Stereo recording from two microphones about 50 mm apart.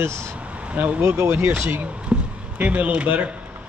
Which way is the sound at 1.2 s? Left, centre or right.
Right.